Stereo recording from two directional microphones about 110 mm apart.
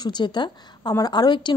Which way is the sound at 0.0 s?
40° left (ahead or behind).